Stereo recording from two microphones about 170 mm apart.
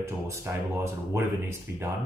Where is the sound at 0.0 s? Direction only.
15° right (ahead or behind).